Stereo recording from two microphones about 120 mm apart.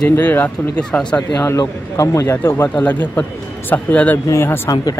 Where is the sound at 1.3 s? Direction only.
25° left (ahead or behind).